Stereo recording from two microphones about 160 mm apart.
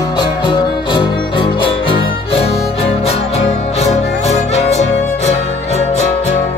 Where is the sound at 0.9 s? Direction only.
30° left (ahead or behind).